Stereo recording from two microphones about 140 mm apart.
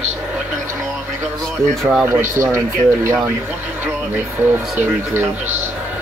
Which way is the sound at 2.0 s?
20° right (ahead or behind).